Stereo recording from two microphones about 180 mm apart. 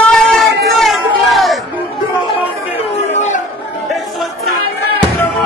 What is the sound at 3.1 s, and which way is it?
Chatter, 40° left (ahead or behind).